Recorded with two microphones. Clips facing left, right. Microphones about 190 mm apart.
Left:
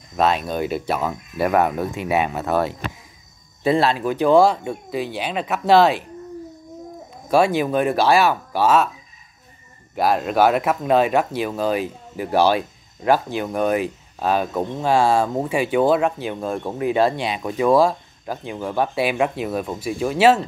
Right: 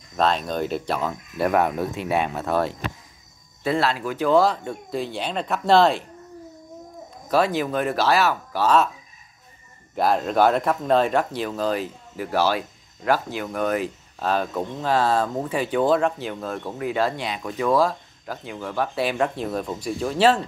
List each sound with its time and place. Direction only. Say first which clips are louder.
0.2 s speech: left 2 dB; 10° left (ahead or behind)
3.6 s speech: left 5 dB; 20° left (ahead or behind)
7.2 s speech: left 4 dB; 10° left (ahead or behind)
9.9 s speech: left 2 dB; 5° left (ahead or behind)